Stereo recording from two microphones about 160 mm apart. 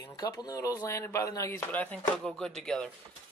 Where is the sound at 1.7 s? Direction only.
10° left (ahead or behind).